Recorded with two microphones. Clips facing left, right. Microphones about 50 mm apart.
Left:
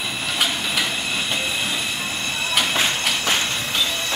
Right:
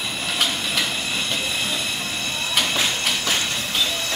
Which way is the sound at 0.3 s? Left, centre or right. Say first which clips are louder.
Left 1 dB; centre.